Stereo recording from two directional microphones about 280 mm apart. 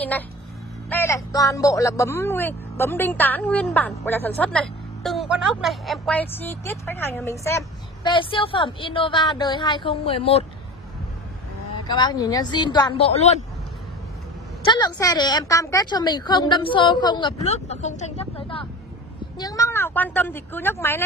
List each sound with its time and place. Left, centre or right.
0.8 s speech: centre
11.9 s speech: centre
14.7 s speech: centre